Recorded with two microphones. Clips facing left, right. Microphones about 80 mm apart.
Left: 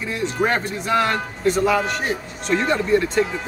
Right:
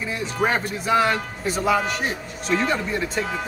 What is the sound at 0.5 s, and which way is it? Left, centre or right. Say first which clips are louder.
Speech: even; centre.